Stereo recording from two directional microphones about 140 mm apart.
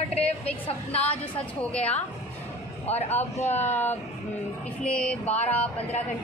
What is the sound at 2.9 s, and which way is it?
Speech, 50° left (ahead or behind).